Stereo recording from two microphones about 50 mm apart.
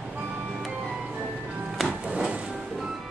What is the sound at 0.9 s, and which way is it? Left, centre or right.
Music, centre.